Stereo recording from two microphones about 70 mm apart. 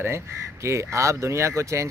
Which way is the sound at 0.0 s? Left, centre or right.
Right.